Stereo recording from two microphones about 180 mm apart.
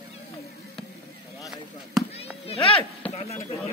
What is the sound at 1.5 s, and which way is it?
Speech, centre (ahead or behind).